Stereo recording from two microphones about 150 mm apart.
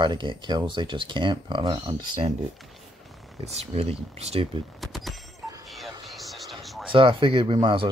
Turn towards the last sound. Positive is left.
turn(degrees=-35)  # may be behind; listen again after turning